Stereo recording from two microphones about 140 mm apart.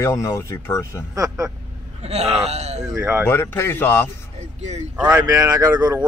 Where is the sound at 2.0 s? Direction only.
50° right (ahead or behind).